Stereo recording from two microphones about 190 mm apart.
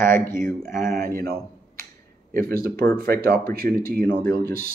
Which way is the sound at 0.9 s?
50° right (ahead or behind).